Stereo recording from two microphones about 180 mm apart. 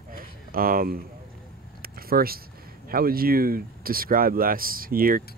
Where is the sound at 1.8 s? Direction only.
55° right (ahead or behind).